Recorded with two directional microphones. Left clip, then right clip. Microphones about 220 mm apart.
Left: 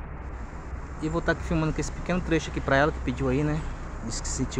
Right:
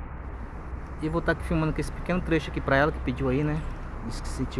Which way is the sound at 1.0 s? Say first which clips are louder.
Even; centre (ahead or behind).